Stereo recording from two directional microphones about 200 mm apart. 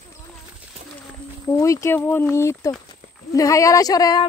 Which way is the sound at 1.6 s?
15° left (ahead or behind).